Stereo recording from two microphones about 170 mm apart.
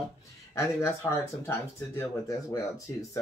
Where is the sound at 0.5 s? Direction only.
15° left (ahead or behind).